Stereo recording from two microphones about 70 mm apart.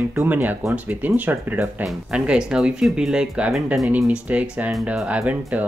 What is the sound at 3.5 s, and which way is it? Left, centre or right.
Speech, centre.